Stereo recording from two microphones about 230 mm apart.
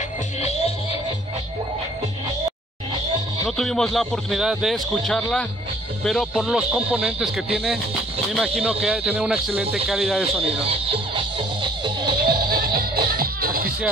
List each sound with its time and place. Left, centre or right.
0.4 s music: left
3.4 s speech: centre
10.4 s music: right
12.2 s music: right